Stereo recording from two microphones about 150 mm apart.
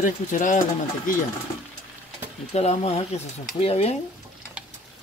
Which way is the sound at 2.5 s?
45° left (ahead or behind).